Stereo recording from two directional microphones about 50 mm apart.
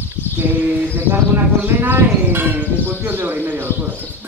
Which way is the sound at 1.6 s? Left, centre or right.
Right.